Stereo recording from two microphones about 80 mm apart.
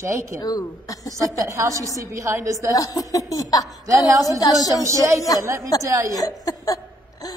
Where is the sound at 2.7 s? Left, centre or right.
Left.